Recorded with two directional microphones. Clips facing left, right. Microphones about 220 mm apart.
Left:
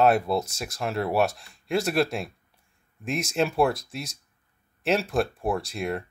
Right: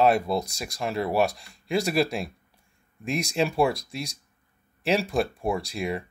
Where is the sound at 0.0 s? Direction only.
5° left (ahead or behind).